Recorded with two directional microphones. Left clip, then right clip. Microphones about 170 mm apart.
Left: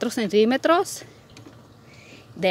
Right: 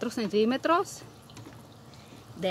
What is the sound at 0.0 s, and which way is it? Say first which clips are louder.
Speech: left 7 dB; 35° left (ahead or behind).